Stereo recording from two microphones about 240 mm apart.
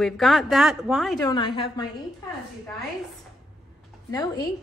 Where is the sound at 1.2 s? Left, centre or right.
Centre.